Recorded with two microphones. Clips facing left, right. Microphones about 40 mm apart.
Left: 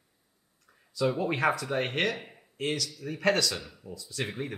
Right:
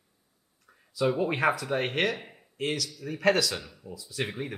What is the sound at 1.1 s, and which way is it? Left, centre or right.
Speech, centre.